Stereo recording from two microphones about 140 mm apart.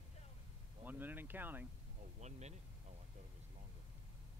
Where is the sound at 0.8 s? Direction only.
15° right (ahead or behind).